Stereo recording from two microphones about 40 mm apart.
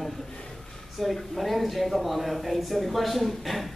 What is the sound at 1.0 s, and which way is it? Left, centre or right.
Speech, centre.